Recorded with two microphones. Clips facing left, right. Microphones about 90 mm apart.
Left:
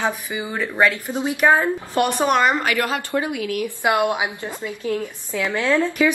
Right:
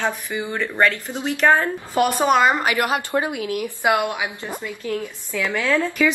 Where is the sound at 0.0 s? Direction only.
15° left (ahead or behind).